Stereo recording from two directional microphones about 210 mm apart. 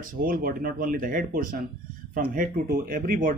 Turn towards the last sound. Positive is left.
turn(degrees=-45)  # may be behind; listen again after turning